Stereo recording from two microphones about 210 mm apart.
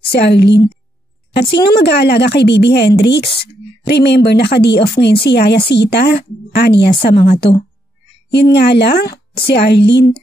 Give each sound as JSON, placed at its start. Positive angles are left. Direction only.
{"t": 0.1, "sound": "a woman's voice", "side_deg": 50}
{"t": 8.3, "sound": "a woman's voice", "side_deg": 50}